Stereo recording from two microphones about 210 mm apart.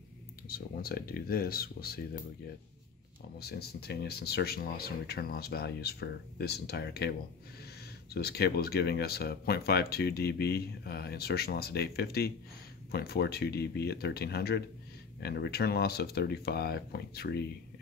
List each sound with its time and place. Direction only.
0.5 s speech: 45° left (ahead or behind)